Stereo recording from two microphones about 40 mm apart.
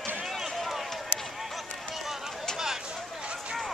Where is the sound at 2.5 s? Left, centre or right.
Centre.